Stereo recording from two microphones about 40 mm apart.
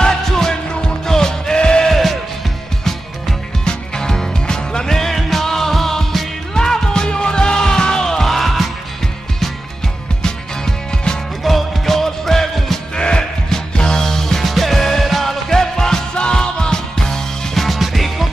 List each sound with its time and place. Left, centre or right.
0.0 s music: centre
1.9 s music: centre
3.6 s music: centre
8.3 s music: centre
10.2 s music: centre
11.4 s music: centre
12.9 s music: left
17.6 s music: centre